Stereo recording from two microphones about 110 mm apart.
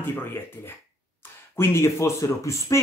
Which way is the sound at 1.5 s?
25° left (ahead or behind).